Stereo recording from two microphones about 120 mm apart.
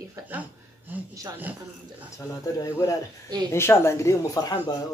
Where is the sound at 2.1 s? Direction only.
25° left (ahead or behind).